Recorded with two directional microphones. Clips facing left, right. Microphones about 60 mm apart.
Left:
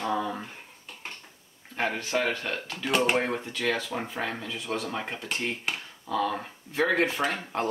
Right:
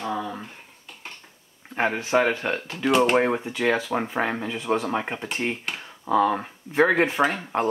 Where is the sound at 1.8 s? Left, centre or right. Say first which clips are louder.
Right 6 dB; right.